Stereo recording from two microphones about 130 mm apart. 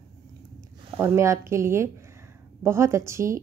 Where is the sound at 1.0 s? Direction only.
20° right (ahead or behind).